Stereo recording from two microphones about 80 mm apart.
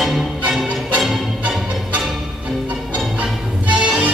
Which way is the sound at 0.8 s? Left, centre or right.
Centre.